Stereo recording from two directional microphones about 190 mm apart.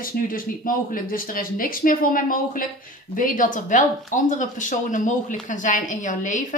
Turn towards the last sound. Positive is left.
turn(degrees=45)  # may be behind; listen again after turning